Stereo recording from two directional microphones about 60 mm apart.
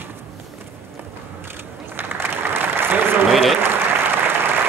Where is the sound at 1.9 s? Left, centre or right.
Right.